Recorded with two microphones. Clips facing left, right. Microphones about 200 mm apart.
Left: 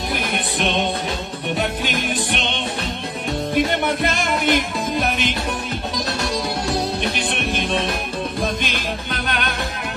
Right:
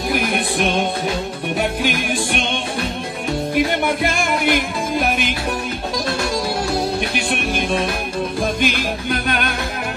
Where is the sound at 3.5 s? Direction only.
5° right (ahead or behind).